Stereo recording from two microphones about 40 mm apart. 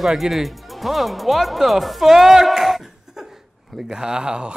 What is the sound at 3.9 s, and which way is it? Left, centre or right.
Speech, centre.